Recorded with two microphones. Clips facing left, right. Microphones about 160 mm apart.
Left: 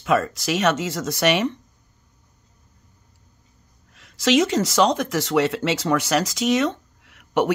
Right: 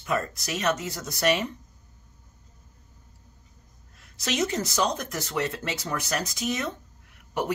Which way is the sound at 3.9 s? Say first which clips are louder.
Left 11 dB; 90° left.